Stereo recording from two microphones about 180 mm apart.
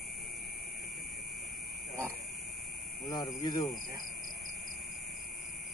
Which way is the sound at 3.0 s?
20° left (ahead or behind).